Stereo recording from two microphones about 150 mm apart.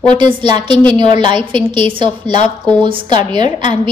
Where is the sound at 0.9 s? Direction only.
30° right (ahead or behind).